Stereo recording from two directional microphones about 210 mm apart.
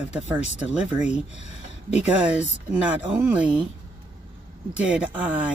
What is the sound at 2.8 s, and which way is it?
Speech, 5° right (ahead or behind).